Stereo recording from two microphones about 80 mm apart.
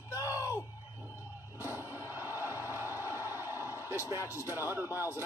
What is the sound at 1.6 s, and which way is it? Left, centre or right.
Music, right.